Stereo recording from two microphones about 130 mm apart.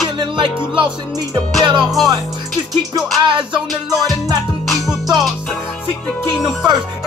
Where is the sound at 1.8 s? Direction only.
Centre (ahead or behind).